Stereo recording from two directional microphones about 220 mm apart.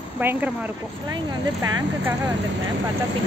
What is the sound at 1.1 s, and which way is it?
Speech, 20° right (ahead or behind).